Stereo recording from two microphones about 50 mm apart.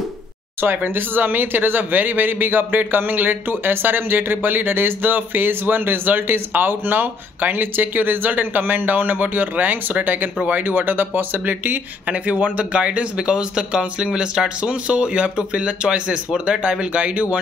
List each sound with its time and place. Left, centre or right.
0.8 s a man's voice: right
12.1 s speech: right